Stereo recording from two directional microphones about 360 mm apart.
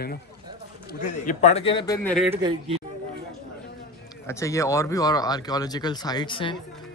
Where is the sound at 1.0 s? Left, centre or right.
Left; by 2.3 s centre.